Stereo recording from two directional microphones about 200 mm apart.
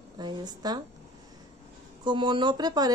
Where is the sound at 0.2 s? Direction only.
20° right (ahead or behind).